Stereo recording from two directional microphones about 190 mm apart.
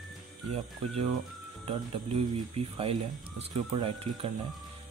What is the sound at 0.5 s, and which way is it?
Speech, 30° right (ahead or behind).